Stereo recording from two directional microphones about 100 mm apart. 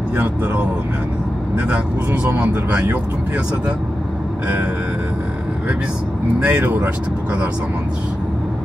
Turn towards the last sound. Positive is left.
turn(degrees=-20)  # may be behind; listen again after turning